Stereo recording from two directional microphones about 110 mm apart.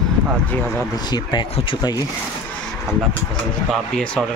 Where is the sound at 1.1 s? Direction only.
40° left (ahead or behind).